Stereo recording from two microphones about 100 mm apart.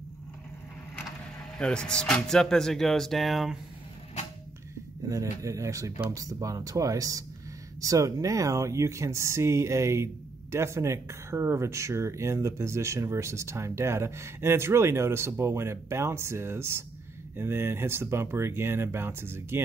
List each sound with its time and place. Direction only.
1.6 s speech: 10° left (ahead or behind)
5.1 s speech: 30° right (ahead or behind)